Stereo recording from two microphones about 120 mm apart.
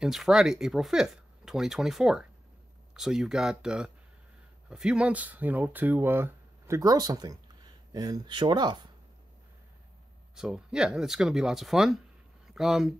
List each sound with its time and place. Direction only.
0.0 s speech: 5° right (ahead or behind); by 6.8 s 20° right (ahead or behind)
6.8 s speech: 30° right (ahead or behind)
10.3 s speech: 5° right (ahead or behind)